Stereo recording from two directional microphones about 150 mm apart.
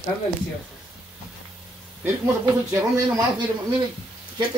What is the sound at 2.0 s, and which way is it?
A man's voice, 25° right (ahead or behind).